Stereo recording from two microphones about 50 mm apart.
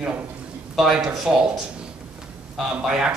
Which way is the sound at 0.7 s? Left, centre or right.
Centre.